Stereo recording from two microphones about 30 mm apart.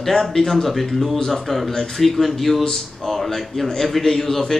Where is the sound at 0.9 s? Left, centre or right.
Centre.